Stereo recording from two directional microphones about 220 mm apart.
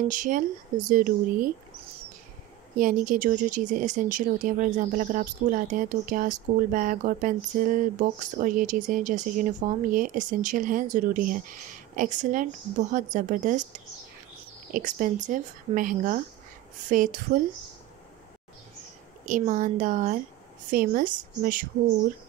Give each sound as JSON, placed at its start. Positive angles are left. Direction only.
{"t": 0.1, "sound": "speech", "side_deg": -35}
{"t": 2.8, "sound": "speech", "side_deg": -35}
{"t": 14.7, "sound": "speech", "side_deg": -35}
{"t": 19.2, "sound": "speech", "side_deg": -35}